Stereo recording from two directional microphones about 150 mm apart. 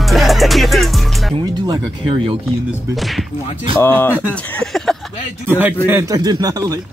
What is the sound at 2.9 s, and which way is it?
Speech, centre (ahead or behind).